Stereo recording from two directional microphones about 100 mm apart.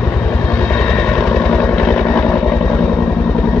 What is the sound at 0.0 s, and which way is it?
Vehicle, 10° left (ahead or behind).